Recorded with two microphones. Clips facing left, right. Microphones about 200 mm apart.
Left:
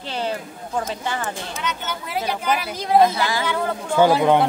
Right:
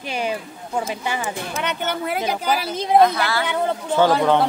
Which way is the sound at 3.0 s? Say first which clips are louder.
Even; 15° left (ahead or behind).